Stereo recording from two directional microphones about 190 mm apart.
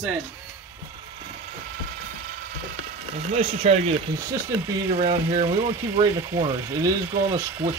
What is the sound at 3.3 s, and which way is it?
Speech, 35° right (ahead or behind).